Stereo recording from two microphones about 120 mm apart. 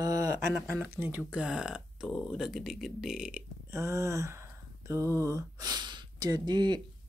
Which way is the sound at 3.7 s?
25° right (ahead or behind).